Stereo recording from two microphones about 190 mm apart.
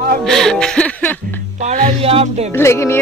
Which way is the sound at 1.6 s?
35° right (ahead or behind).